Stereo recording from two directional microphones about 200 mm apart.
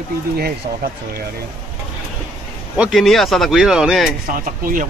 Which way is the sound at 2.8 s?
Centre (ahead or behind).